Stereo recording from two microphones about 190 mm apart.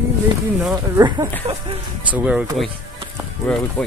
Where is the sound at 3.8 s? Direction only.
10° left (ahead or behind).